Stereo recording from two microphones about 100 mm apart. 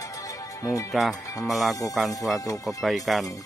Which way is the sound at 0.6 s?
35° left (ahead or behind).